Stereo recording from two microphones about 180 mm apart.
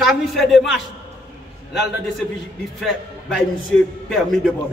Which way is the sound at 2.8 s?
Centre (ahead or behind).